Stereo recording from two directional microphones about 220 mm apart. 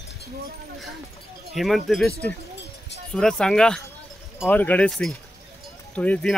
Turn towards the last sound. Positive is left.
turn(degrees=5)  # may be behind; listen again after turning